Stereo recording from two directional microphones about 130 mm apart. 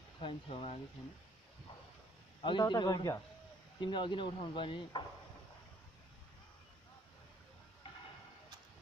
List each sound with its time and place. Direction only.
0.2 s speech: 40° left (ahead or behind)
2.4 s speech: 35° left (ahead or behind)